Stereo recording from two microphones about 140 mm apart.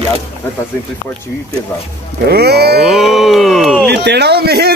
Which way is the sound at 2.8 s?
Centre (ahead or behind).